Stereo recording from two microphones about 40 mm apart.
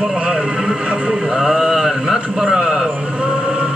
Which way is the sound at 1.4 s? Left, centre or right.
Centre.